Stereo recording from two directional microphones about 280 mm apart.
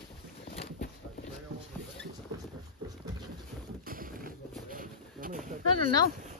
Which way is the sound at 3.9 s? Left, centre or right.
Right.